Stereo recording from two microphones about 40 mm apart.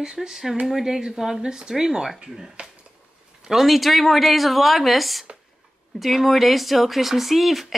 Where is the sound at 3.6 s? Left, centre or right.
Centre.